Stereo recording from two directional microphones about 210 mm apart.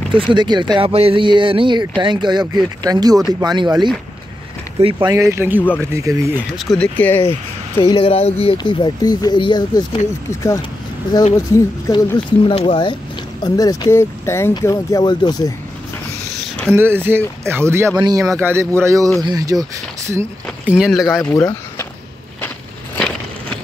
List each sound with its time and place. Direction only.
0.1 s speech: 20° right (ahead or behind)
5.1 s speech: 15° right (ahead or behind)
6.3 s speech: centre (ahead or behind)
7.8 s speech: 25° left (ahead or behind)
11.3 s speech: 15° left (ahead or behind)
12.4 s speech: 25° left (ahead or behind)
16.7 s speech: 10° right (ahead or behind)
21.2 s speech: 10° left (ahead or behind)
22.9 s a sound: 5° left (ahead or behind)